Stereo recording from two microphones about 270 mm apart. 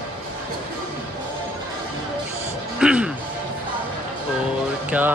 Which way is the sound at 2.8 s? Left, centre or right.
Centre.